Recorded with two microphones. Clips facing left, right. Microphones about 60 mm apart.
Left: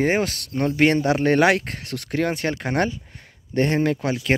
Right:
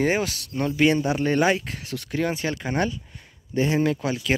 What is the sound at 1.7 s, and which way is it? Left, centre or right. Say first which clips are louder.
Speech: left 2 dB; left.